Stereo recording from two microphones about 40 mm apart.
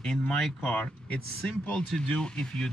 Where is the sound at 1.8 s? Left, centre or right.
Centre.